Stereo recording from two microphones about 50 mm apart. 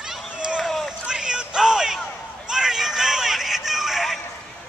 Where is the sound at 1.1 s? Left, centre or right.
Centre.